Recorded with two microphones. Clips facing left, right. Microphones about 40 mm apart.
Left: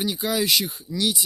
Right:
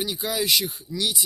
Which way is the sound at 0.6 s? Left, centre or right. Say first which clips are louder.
Right 1 dB; left.